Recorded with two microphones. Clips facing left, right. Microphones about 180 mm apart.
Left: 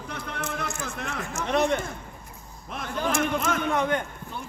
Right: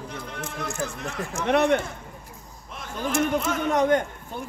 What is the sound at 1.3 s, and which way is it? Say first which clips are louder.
Speech: right 4 dB; 60° right (ahead or behind).